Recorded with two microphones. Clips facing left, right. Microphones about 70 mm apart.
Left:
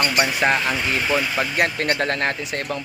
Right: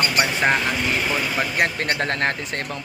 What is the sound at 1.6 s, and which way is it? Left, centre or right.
Speech, right.